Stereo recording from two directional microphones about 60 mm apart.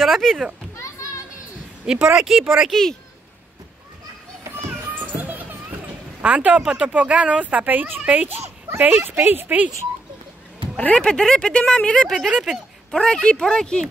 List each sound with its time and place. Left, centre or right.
0.0 s a child's voice: centre
0.7 s children playing: left
1.9 s speech: centre
2.7 s speech: centre
5.1 s children playing: right
6.2 s speech: right
8.7 s a woman's voice: right
10.9 s a child's voice: centre